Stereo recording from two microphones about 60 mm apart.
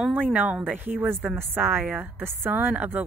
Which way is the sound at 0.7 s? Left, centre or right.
Right.